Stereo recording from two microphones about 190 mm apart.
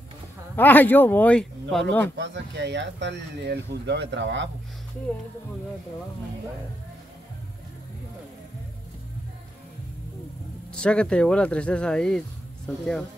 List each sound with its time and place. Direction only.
0.6 s speech: 10° left (ahead or behind)
2.1 s speech: 70° right (ahead or behind)
10.7 s speech: 5° left (ahead or behind)